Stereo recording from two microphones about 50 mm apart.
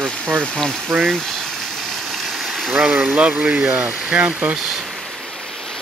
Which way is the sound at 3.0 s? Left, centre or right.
Right.